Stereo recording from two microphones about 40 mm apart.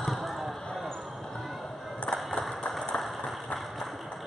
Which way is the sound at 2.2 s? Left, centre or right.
Centre.